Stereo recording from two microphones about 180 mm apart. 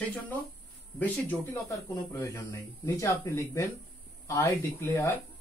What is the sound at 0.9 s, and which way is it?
Speech, 10° left (ahead or behind).